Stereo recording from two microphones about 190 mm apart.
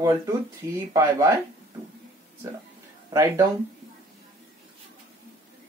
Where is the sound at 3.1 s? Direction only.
15° right (ahead or behind).